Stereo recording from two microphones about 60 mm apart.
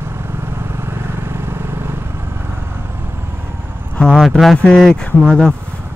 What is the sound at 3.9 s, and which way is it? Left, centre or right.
Speech, centre.